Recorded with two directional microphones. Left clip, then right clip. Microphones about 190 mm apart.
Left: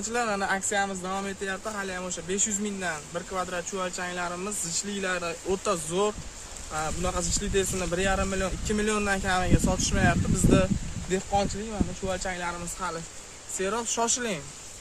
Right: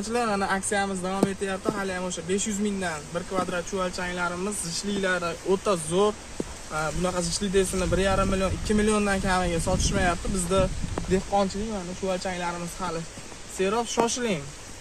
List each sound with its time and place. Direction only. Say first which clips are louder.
0.0 s speech: right 2 dB; 5° left (ahead or behind)
12.1 s speech: right 4 dB; centre (ahead or behind)
13.6 s speech: right 3 dB; 15° right (ahead or behind)